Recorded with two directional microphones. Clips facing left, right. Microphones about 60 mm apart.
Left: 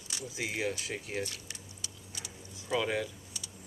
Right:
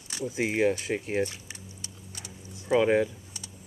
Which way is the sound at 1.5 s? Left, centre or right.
Right.